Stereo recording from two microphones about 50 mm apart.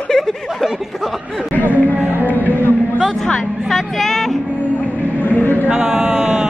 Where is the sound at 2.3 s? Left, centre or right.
Left.